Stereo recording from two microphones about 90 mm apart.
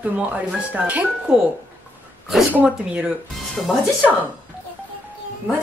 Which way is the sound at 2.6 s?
10° right (ahead or behind).